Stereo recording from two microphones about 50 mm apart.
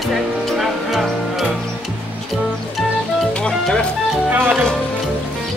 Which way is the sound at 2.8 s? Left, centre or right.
Centre.